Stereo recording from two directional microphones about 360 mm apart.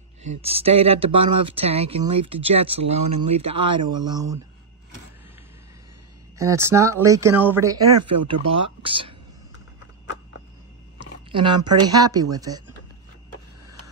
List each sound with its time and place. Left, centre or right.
0.4 s speech: centre
6.3 s speech: centre
11.0 s a sound: centre
11.9 s speech: centre